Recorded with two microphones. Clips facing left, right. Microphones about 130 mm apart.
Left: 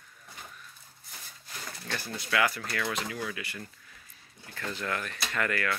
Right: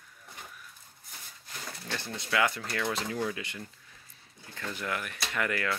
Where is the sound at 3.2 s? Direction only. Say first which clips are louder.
Right 2 dB; 25° right (ahead or behind).